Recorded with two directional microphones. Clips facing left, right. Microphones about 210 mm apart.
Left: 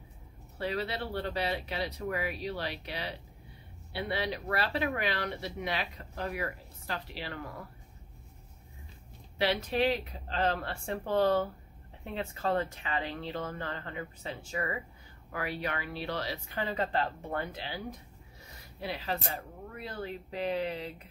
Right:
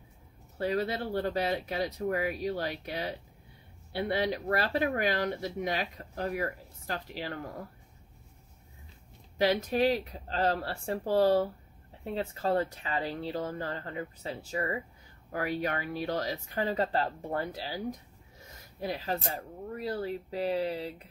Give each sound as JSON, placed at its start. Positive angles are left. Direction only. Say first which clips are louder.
{"t": 0.6, "sound": "speech", "louder": "right 4 dB", "side_deg": -45}
{"t": 9.4, "sound": "speech", "louder": "right 3 dB", "side_deg": -45}